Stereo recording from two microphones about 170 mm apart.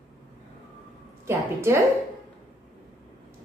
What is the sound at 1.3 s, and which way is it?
Speech, 15° right (ahead or behind).